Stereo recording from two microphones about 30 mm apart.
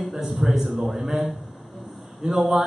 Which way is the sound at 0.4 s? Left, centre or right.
Centre.